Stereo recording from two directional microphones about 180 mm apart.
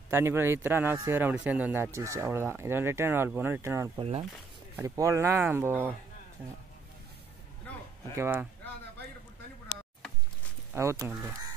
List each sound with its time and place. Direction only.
0.1 s speech: 15° right (ahead or behind)
4.0 s speech: 35° right (ahead or behind)
4.7 s speech: 20° right (ahead or behind)
8.1 s speech: 15° right (ahead or behind)
10.7 s speech: 15° right (ahead or behind)